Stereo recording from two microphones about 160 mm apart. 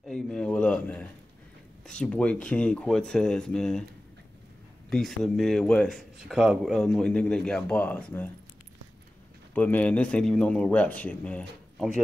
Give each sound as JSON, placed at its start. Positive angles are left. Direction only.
{"t": 0.0, "sound": "a sound", "side_deg": 5}
{"t": 1.9, "sound": "a man's voice", "side_deg": 5}
{"t": 4.8, "sound": "a man's voice", "side_deg": 5}
{"t": 9.5, "sound": "speech", "side_deg": 10}